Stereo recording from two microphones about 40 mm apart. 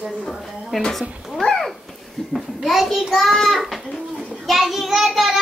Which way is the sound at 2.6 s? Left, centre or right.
Centre.